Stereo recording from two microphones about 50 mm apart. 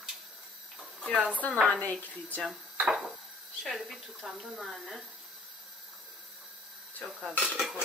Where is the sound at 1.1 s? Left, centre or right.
Right.